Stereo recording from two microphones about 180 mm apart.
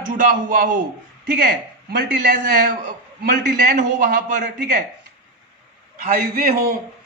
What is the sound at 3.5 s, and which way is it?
A man's voice, 45° right (ahead or behind).